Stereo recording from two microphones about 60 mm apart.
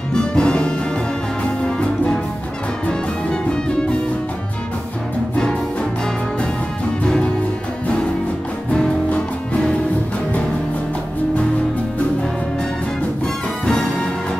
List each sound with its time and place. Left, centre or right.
0.1 s music: centre
9.1 s music: left